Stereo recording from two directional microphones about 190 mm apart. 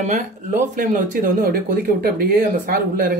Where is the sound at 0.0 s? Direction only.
40° right (ahead or behind).